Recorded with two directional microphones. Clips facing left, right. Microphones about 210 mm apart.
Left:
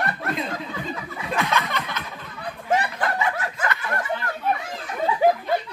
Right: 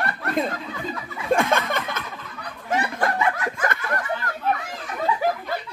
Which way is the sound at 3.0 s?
50° right (ahead or behind).